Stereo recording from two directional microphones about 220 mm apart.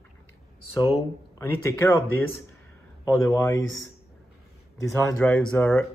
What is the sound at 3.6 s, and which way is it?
Speech, 60° left (ahead or behind).